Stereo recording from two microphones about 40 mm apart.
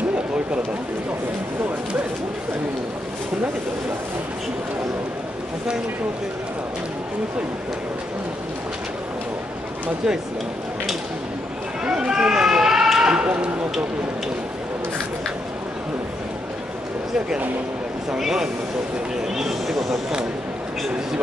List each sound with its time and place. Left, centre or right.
11.8 s run: centre
13.0 s a sound: right
13.3 s speech: right
18.1 s speech: centre